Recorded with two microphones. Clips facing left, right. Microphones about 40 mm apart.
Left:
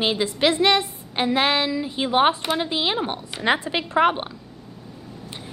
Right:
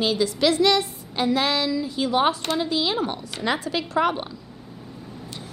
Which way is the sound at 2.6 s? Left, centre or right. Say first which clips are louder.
Even; left.